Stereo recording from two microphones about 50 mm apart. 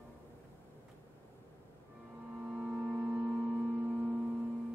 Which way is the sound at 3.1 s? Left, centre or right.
Right.